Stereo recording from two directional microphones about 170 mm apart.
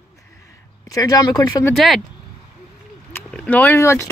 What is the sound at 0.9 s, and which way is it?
Speech, 20° left (ahead or behind).